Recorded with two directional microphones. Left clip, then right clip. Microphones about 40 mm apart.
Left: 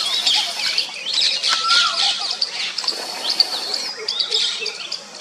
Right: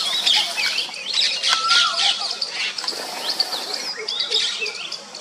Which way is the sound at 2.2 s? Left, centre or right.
Left.